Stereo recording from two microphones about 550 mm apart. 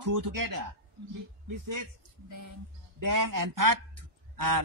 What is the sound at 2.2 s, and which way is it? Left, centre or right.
A man's voice, right.